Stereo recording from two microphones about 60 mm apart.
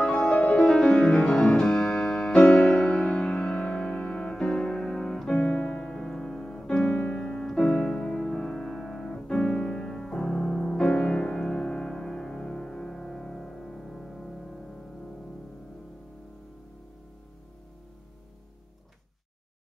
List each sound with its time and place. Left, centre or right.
0.0 s music: centre
5.5 s piano: centre
10.9 s music: centre